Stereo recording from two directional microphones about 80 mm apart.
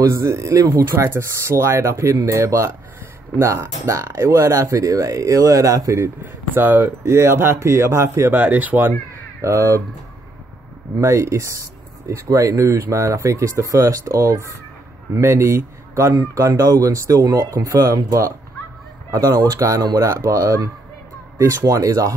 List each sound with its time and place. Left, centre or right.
0.0 s speech: right
0.8 s speech: right
6.5 s speech: right
9.4 s speech: right
11.0 s speech: right
16.2 s speech: right